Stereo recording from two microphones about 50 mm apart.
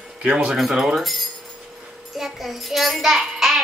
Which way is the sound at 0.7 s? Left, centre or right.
Centre.